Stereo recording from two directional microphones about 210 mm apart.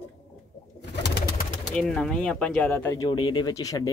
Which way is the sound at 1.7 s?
5° left (ahead or behind).